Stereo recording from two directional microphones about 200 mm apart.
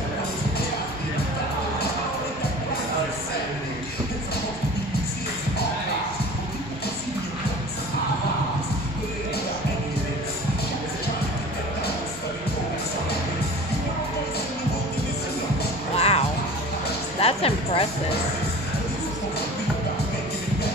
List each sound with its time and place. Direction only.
16.0 s music: 30° left (ahead or behind)